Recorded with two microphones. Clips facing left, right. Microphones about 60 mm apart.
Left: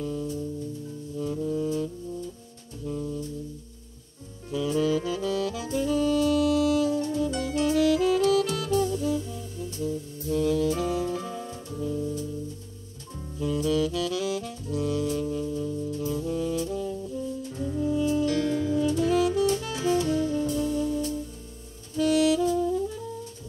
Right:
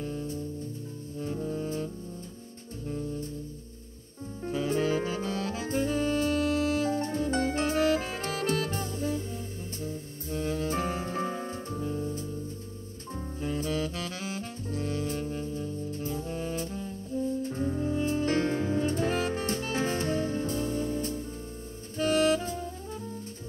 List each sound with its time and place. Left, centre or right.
0.0 s music: right
4.5 s music: right
13.1 s saxophone: right